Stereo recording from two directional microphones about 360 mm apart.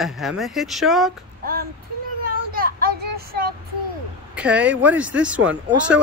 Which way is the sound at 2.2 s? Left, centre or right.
Right.